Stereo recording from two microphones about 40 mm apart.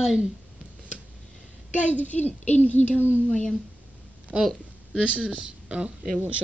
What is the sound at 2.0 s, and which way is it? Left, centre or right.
Speech, left.